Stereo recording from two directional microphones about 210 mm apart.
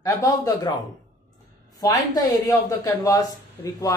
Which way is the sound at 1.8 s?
15° left (ahead or behind).